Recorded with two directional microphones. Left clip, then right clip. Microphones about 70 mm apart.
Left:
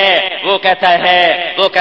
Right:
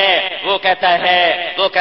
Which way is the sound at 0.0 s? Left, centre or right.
Left.